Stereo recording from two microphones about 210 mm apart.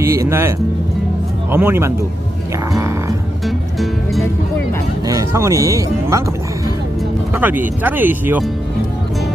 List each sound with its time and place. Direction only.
0.0 s speech: 15° right (ahead or behind)
3.4 s music: centre (ahead or behind)
5.0 s speech: 15° right (ahead or behind)
7.3 s speech: 10° right (ahead or behind)